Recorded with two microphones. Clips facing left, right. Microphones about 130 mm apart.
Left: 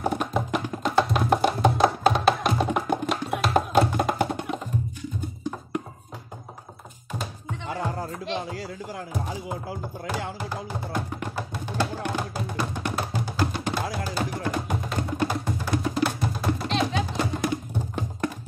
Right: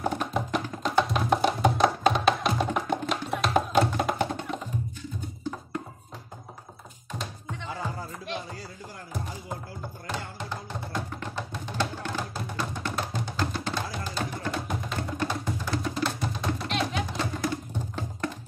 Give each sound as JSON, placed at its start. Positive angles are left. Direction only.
{"t": 0.0, "sound": "music", "side_deg": 5}
{"t": 7.7, "sound": "music", "side_deg": 65}
{"t": 10.5, "sound": "music", "side_deg": 10}